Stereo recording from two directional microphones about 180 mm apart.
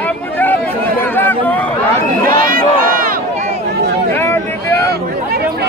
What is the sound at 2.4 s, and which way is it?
Crowd, 50° right (ahead or behind).